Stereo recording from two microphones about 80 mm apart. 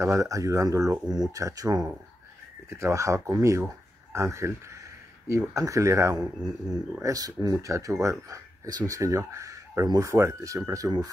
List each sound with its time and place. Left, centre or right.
0.0 s speech: right
1.1 s speech: right
7.5 s speech: right